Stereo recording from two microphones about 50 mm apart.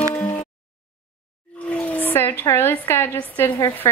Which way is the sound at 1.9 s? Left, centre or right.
Left.